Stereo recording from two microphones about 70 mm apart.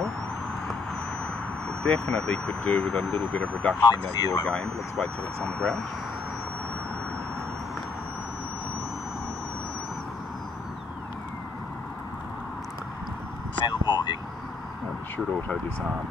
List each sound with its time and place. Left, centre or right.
1.8 s speech: centre
3.2 s speech: centre
3.8 s speech: left
4.5 s speech: centre
13.6 s a sound: left